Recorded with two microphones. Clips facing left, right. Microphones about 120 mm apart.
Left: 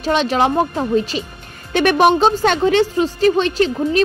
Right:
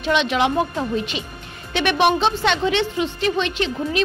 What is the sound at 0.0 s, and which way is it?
A woman's voice, 40° left (ahead or behind).